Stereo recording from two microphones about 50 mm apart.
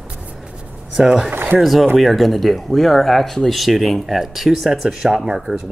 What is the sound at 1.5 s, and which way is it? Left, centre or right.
Speech, centre.